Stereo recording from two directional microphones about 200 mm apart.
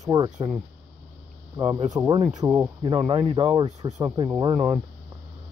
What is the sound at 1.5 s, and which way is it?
Speech, 20° right (ahead or behind).